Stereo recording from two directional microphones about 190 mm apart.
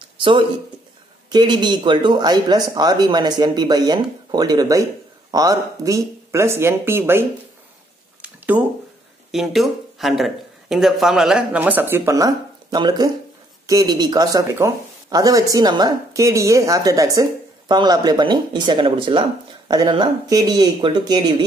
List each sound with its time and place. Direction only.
0.2 s speech: 25° right (ahead or behind)
8.2 s a sound: 10° right (ahead or behind)
9.3 s speech: centre (ahead or behind); by 21.4 s 20° right (ahead or behind)